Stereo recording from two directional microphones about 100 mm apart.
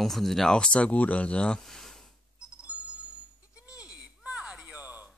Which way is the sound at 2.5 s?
15° right (ahead or behind).